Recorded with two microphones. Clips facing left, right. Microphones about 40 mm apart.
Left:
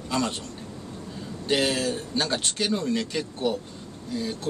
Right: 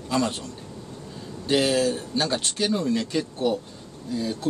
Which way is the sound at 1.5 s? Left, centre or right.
Centre.